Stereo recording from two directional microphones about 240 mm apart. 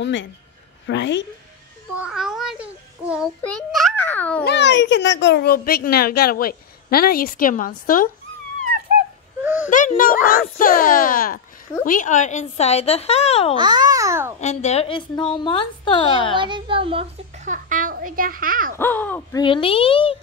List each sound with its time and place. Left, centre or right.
0.0 s a woman's voice: left
2.0 s a sound: centre
4.5 s a child's voice: left
9.4 s a sound: centre
9.7 s a child's voice: left
13.6 s a child's voice: centre
14.4 s a woman's voice: left
16.3 s a child's voice: centre; by 18.8 s right
18.8 s speech: centre
19.4 s a woman's voice: left